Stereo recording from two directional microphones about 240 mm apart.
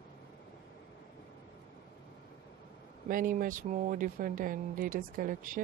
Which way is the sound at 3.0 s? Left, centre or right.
Right.